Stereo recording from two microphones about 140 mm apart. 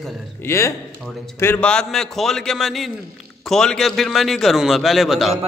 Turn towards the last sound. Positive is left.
turn(degrees=0)  # may be behind; listen again after turning